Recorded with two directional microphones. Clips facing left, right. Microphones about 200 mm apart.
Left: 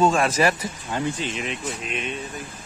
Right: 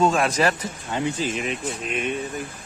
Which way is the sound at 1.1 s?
Centre (ahead or behind).